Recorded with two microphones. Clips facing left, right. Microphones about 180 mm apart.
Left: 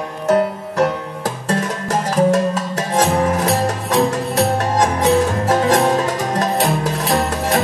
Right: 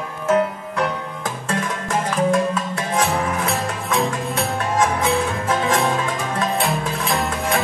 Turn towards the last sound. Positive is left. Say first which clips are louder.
# left 4 dB
turn(degrees=40)  # may be behind; listen again after turning